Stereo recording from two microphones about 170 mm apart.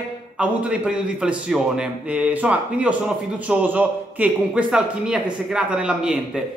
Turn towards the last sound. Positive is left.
turn(degrees=-5)  # may be behind; listen again after turning